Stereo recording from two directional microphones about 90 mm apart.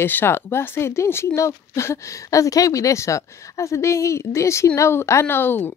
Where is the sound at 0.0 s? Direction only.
25° left (ahead or behind).